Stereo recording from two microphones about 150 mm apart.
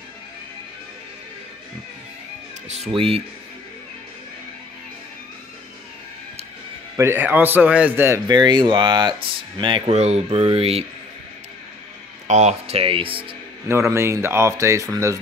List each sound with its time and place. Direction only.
2.7 s speech: 40° right (ahead or behind)
7.0 s a man's voice: 15° right (ahead or behind)
8.3 s speech: 30° right (ahead or behind)
12.3 s speech: 50° right (ahead or behind)
13.7 s speech: 15° right (ahead or behind)